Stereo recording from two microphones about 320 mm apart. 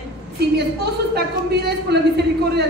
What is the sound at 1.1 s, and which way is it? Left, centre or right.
A woman's voice, right.